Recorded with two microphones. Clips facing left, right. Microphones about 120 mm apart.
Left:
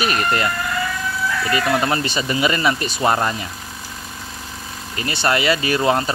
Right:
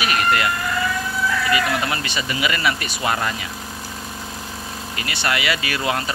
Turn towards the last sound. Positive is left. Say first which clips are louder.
# left 6 dB
turn(degrees=30)  # may be behind; listen again after turning